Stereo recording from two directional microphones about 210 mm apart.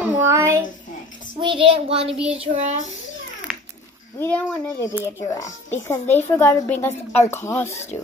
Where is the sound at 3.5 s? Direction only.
Centre (ahead or behind).